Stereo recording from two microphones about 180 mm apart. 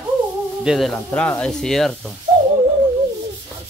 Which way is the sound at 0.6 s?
Centre (ahead or behind).